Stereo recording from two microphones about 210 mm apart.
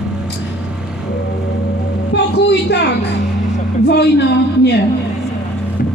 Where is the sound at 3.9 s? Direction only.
50° left (ahead or behind).